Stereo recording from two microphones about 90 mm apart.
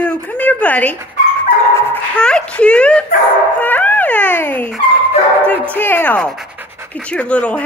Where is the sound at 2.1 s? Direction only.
10° left (ahead or behind).